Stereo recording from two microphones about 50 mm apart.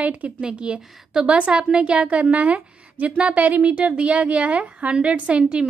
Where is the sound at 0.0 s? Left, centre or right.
Right.